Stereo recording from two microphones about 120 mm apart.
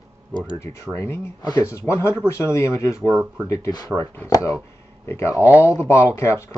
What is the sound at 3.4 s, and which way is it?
Speech, 25° left (ahead or behind).